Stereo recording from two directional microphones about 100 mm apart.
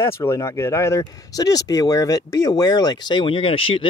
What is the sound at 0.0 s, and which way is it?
Speech, 25° left (ahead or behind).